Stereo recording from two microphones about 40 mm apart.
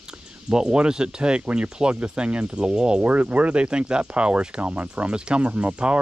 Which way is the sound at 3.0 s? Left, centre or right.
Right.